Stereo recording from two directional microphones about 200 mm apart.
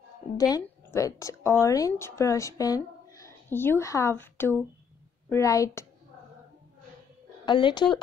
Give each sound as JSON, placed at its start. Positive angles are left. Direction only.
{"t": 0.4, "sound": "a woman's voice", "side_deg": 15}
{"t": 7.4, "sound": "speech", "side_deg": 25}